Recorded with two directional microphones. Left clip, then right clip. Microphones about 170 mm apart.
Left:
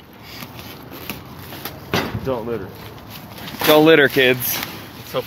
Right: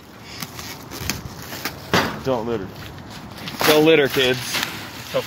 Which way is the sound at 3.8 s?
30° left (ahead or behind).